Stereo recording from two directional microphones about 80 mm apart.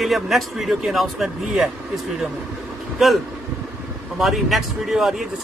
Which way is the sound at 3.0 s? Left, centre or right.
Centre.